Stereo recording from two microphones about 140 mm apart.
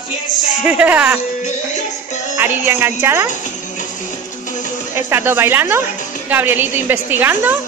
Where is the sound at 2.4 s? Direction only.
15° right (ahead or behind).